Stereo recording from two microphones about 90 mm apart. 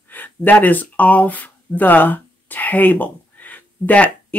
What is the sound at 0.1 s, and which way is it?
Speech, 20° left (ahead or behind).